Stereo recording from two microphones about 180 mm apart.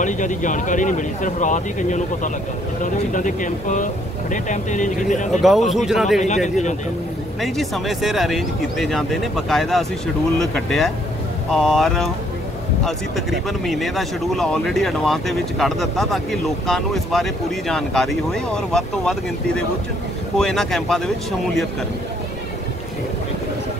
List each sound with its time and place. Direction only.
0.0 s speech: 45° left (ahead or behind)
5.7 s speech: centre (ahead or behind)
6.2 s speech: 40° left (ahead or behind)
7.4 s speech: centre (ahead or behind)